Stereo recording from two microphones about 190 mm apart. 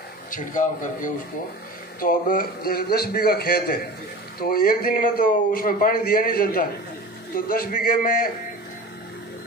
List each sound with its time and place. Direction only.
0.3 s speech: 45° left (ahead or behind)